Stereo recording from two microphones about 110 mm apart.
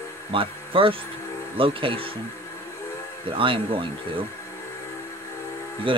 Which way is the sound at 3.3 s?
50° right (ahead or behind).